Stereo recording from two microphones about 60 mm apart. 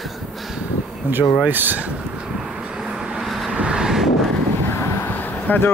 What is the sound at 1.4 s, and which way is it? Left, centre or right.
Speech, right.